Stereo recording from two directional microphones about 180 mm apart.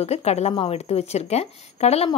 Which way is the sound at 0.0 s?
35° left (ahead or behind).